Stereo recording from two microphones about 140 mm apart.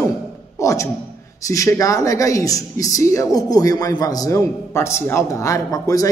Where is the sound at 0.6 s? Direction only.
20° left (ahead or behind).